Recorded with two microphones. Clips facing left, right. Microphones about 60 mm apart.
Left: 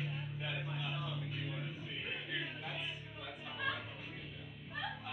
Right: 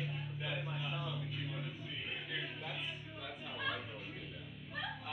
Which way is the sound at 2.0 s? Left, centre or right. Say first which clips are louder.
Left 1 dB; left.